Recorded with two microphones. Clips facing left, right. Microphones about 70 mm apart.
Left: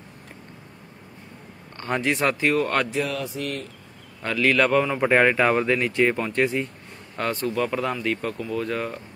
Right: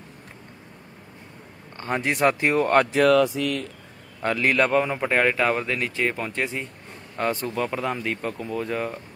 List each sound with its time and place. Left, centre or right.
1.8 s a man's voice: centre
2.1 s speech: right
4.2 s a man's voice: right
4.6 s a man's voice: centre
5.0 s a man's voice: centre